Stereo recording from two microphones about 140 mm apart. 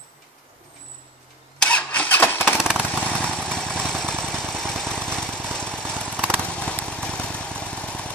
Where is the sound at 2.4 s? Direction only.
5° right (ahead or behind).